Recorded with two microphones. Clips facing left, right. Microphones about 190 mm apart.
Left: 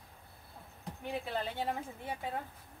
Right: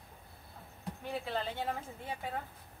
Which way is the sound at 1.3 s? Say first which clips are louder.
Even; 15° left (ahead or behind).